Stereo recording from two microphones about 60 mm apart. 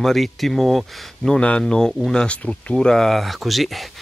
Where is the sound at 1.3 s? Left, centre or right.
Centre.